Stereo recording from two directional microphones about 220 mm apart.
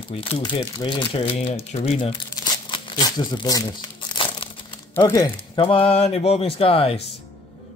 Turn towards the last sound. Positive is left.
turn(degrees=25)  # may be behind; listen again after turning